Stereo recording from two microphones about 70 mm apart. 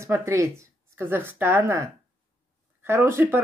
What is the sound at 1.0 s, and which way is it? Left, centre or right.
Speech, right.